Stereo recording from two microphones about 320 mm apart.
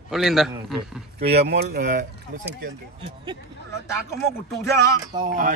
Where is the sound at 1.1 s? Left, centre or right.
Right.